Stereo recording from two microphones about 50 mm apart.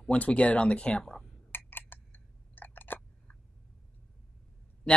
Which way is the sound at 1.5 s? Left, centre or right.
Left.